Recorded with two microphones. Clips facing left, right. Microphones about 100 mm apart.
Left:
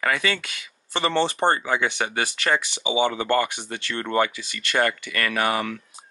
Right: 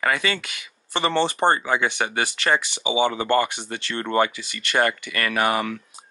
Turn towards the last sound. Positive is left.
turn(degrees=-25)  # may be behind; listen again after turning